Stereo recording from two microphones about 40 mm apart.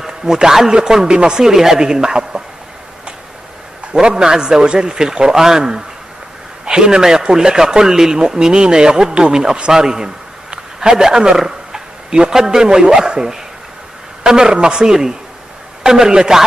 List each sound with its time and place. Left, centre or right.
0.0 s a man's voice: centre
1.4 s a man's voice: centre
3.9 s a man's voice: centre